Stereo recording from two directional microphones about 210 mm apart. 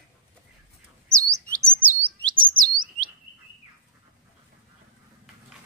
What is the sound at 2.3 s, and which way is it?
Chirp, 40° right (ahead or behind).